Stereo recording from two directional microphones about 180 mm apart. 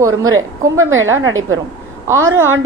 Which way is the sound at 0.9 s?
90° right.